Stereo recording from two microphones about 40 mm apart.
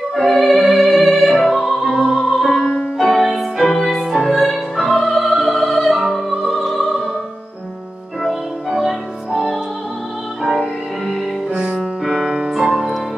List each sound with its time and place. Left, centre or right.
0.1 s music: centre
1.5 s opera: centre
2.5 s music: left
3.0 s music: centre
5.9 s opera: centre
8.2 s music: centre